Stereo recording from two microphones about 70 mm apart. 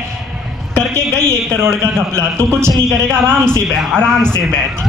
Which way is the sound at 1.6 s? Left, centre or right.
Right.